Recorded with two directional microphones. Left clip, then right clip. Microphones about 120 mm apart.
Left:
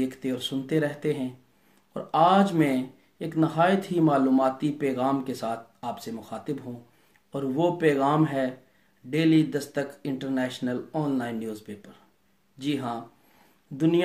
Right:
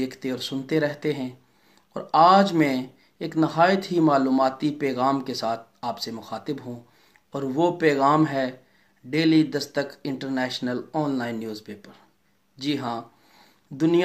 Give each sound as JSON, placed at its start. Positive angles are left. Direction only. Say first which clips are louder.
{"t": 0.0, "sound": "speech", "louder": "right 1 dB", "side_deg": 25}